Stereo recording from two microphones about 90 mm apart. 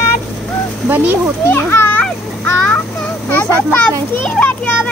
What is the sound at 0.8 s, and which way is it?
Speech, 20° right (ahead or behind).